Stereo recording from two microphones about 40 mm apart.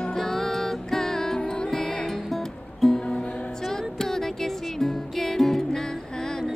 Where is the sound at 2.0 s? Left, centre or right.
Centre.